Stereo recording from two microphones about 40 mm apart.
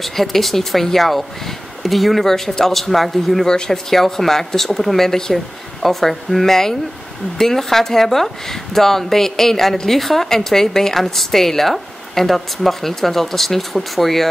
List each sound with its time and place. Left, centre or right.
0.0 s a woman's voice: centre
3.4 s a woman's voice: centre